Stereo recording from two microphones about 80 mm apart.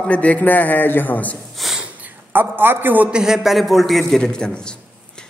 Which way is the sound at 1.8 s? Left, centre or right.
Right.